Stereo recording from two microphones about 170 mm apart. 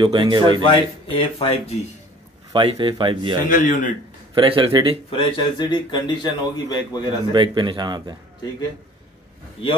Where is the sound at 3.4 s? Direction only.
55° left (ahead or behind).